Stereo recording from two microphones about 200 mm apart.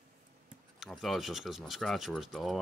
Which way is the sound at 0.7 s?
Centre (ahead or behind).